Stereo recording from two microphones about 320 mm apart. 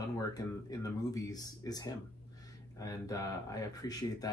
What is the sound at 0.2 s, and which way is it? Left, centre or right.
Speech, centre.